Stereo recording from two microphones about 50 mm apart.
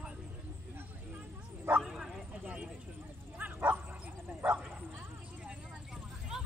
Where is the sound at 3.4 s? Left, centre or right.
Right.